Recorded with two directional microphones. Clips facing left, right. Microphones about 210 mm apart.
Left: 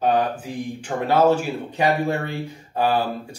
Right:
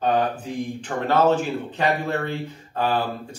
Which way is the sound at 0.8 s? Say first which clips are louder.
Left 2 dB; 10° left (ahead or behind).